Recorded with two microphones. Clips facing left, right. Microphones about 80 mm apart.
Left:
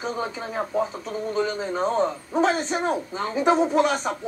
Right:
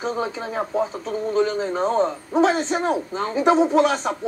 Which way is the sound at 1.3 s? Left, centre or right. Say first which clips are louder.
Right 4 dB; centre.